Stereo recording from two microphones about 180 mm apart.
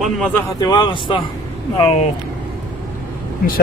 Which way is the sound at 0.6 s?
25° left (ahead or behind).